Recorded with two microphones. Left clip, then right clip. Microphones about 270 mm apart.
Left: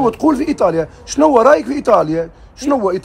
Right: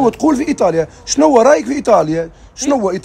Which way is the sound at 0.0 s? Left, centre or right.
Right.